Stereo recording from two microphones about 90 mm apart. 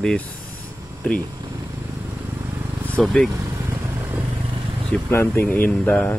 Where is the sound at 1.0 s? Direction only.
20° left (ahead or behind).